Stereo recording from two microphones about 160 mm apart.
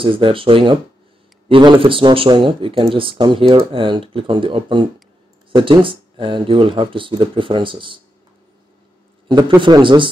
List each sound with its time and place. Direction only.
0.0 s speech: 35° right (ahead or behind)
9.6 s speech: 30° right (ahead or behind)